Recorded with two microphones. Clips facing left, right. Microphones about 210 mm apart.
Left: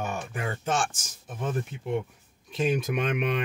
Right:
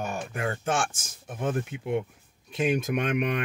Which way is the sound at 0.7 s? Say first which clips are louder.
Even; 55° right (ahead or behind).